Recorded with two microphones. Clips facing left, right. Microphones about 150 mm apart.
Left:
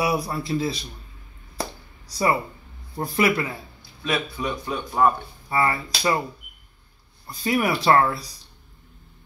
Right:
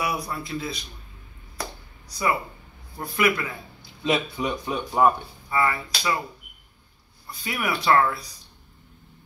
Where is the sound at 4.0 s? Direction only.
20° right (ahead or behind).